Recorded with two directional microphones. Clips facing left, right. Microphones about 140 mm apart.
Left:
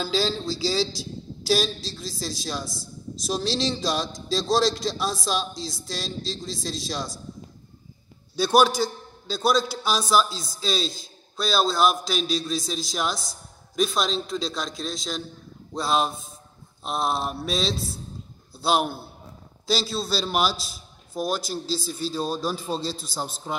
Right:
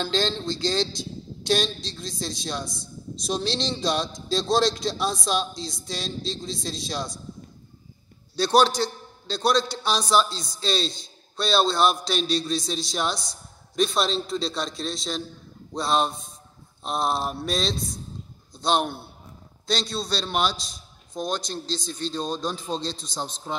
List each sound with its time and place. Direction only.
0.0 s a man's voice: 5° left (ahead or behind)
8.4 s a man's voice: 5° left (ahead or behind)